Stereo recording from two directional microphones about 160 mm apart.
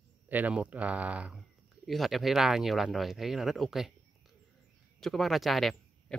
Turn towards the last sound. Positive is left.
turn(degrees=0)  # may be behind; listen again after turning